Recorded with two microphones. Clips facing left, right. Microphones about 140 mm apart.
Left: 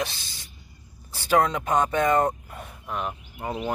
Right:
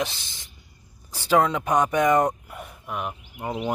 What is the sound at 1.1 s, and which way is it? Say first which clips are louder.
Speech: right 1 dB; 15° right (ahead or behind).